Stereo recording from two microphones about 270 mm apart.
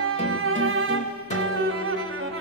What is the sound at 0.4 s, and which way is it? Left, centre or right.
Music, right.